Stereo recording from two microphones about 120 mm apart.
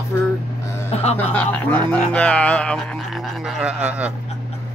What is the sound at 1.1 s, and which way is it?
Speech, 15° left (ahead or behind).